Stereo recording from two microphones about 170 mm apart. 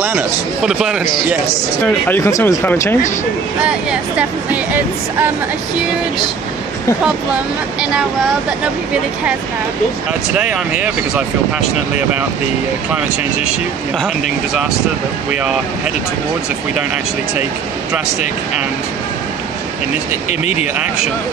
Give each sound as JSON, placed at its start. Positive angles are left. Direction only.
{"t": 0.0, "sound": "speech", "side_deg": -10}
{"t": 1.9, "sound": "speech", "side_deg": 10}
{"t": 3.6, "sound": "speech", "side_deg": -5}
{"t": 10.3, "sound": "speech", "side_deg": -5}
{"t": 13.9, "sound": "speech", "side_deg": -5}
{"t": 20.2, "sound": "speech", "side_deg": 40}